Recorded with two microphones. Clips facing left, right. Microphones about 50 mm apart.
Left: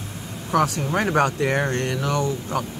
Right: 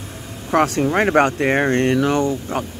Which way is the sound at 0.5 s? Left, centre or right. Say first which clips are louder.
Right 4 dB; right.